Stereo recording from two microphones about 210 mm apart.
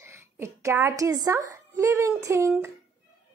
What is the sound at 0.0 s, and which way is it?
A child's voice, 10° right (ahead or behind).